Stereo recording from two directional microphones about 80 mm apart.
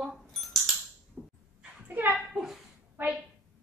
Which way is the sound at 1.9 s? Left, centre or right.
Right.